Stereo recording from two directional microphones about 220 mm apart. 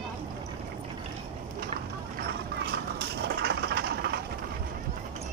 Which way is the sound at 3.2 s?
50° right (ahead or behind).